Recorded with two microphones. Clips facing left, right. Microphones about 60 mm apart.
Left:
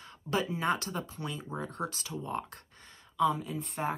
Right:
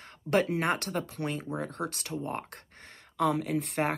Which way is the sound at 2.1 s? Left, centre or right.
Right.